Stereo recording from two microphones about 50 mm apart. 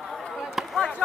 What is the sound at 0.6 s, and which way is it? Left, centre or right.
Chop, centre.